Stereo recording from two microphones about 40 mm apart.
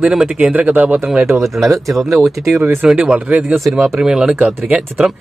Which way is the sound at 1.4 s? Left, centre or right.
Centre.